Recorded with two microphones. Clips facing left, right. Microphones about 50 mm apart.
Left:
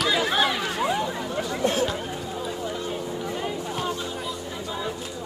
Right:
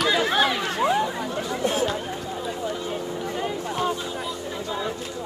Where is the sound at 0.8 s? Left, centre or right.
Right.